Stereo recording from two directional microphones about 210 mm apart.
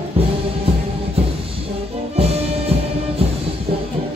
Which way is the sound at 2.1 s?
30° right (ahead or behind).